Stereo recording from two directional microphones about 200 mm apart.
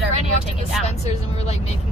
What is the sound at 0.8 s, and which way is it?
Speech, 35° left (ahead or behind).